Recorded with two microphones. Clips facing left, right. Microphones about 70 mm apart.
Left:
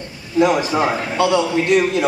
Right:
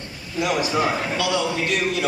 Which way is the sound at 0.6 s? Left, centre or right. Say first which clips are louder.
Left 3 dB; left.